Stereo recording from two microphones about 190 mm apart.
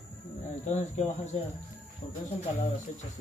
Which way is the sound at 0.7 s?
40° left (ahead or behind).